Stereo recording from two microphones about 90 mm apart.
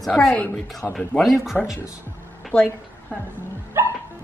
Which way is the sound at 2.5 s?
10° left (ahead or behind).